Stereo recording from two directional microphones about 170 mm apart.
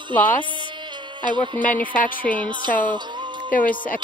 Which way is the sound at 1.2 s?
25° right (ahead or behind).